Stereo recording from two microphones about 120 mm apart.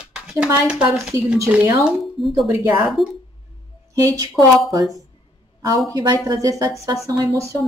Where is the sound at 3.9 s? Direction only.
30° right (ahead or behind).